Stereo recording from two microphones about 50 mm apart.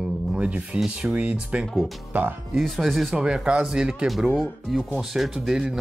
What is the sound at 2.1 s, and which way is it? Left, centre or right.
Speech, right.